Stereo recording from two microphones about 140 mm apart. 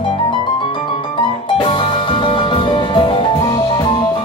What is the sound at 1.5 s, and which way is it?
Music, 35° left (ahead or behind).